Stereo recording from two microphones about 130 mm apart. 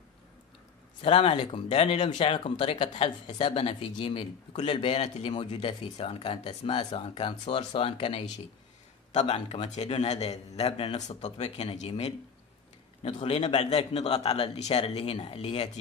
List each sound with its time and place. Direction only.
1.0 s a man's voice: 45° left (ahead or behind)
13.0 s speech: 45° left (ahead or behind)